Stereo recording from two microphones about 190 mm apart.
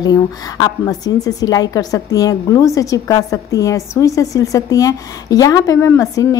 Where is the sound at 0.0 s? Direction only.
20° left (ahead or behind).